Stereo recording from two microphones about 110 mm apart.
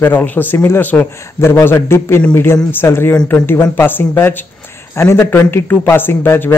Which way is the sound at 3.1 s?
10° left (ahead or behind).